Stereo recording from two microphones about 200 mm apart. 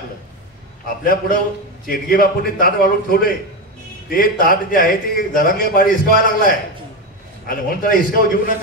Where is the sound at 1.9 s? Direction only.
45° left (ahead or behind).